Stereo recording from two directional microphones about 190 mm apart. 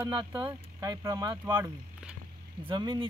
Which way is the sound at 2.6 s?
25° right (ahead or behind).